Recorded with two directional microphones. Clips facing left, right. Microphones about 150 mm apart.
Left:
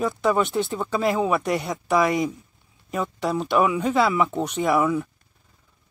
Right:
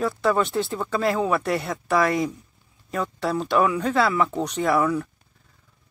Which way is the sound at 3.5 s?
5° left (ahead or behind).